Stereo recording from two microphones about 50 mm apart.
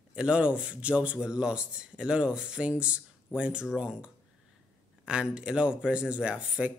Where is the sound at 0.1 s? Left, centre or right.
Right.